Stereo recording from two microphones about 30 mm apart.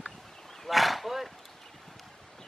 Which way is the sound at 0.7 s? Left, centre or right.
Centre.